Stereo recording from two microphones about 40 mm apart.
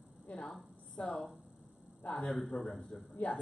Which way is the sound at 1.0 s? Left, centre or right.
Left.